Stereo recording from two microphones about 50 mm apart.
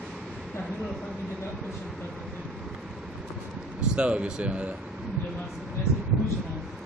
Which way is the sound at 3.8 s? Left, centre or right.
Right.